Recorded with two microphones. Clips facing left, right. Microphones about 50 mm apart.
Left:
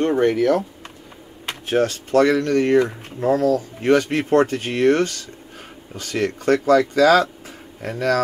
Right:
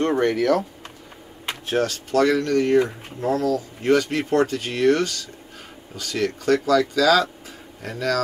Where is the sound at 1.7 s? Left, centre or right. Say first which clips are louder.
Left 4 dB; left.